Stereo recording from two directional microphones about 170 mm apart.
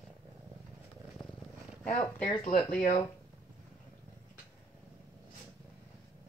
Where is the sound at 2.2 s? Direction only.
50° left (ahead or behind).